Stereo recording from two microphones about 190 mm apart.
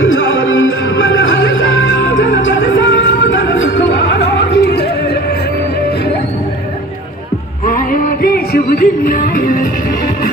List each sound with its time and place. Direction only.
0.0 s music: 90° left; by 4.8 s 65° left (ahead or behind)
7.6 s music: 45° left (ahead or behind)